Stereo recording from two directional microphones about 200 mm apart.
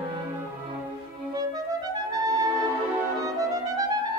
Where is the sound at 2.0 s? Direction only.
20° right (ahead or behind).